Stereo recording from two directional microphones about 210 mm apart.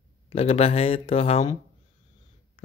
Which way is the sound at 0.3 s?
30° left (ahead or behind).